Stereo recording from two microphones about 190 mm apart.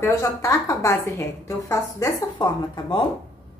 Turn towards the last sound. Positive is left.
turn(degrees=20)  # may be behind; listen again after turning